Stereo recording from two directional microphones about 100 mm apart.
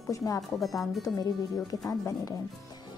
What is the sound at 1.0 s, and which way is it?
Speech, 35° left (ahead or behind).